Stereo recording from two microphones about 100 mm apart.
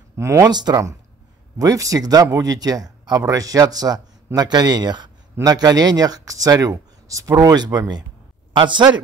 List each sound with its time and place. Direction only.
0.2 s speech: 30° right (ahead or behind)
0.5 s speech: 45° right (ahead or behind)